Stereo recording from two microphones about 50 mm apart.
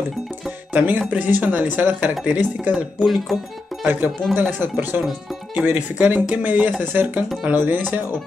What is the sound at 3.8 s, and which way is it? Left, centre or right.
Speech, right.